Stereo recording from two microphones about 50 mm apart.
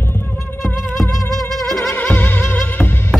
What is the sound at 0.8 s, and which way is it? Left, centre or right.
Music, centre.